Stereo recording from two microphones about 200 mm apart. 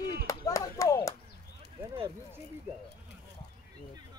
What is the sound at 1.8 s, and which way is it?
Speech, 15° right (ahead or behind).